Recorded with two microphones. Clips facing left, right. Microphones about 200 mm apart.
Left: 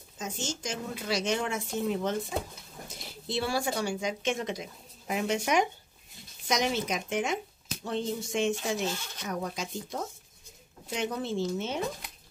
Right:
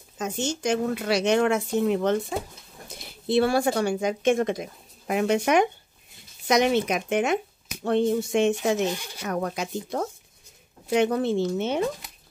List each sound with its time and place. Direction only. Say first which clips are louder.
0.2 s a woman's voice: right 8 dB; 65° right (ahead or behind)
8.8 s speech: right 6 dB; 15° right (ahead or behind)
9.2 s a woman's voice: right 6 dB; 60° right (ahead or behind)